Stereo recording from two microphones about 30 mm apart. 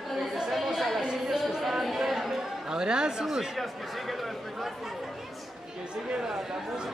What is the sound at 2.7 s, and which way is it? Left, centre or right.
Chatter, right.